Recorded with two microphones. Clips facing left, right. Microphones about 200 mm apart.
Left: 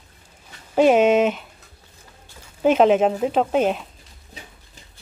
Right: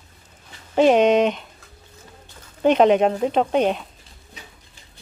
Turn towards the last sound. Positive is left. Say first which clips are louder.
# even
turn(degrees=5)  # may be behind; listen again after turning